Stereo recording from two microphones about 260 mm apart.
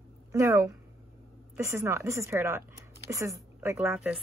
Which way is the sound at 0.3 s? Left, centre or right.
Centre.